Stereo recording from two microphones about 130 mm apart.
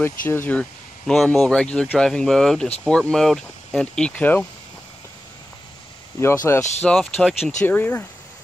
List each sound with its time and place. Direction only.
0.3 s speech: 15° left (ahead or behind)
6.1 s speech: 20° left (ahead or behind)
6.8 s speech: 5° left (ahead or behind)
7.6 s speech: 15° left (ahead or behind)